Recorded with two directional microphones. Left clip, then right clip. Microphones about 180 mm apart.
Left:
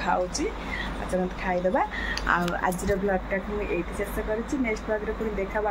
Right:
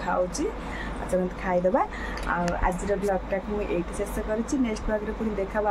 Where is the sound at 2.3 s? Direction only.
10° left (ahead or behind).